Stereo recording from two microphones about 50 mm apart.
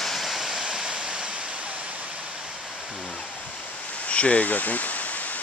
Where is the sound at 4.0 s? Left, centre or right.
Left.